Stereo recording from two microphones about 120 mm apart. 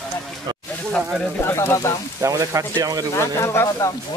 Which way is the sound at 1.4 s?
20° left (ahead or behind).